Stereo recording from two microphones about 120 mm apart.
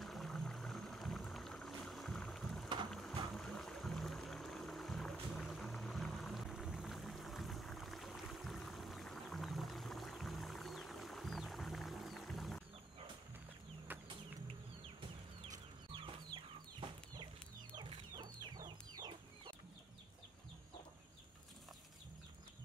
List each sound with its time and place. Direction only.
0.0 s boat: centre (ahead or behind)
2.9 s music: 5° left (ahead or behind)
13.9 s chicken: 15° right (ahead or behind)
17.7 s chicken: 45° right (ahead or behind)
18.2 s chicken: 35° right (ahead or behind)